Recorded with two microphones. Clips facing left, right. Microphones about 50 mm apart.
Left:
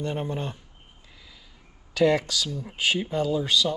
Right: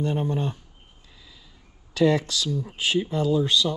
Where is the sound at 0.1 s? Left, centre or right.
Left.